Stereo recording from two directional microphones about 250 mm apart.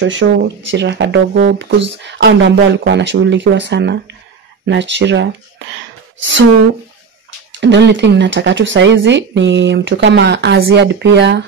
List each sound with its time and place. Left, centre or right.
0.0 s a woman's voice: right
7.6 s speech: right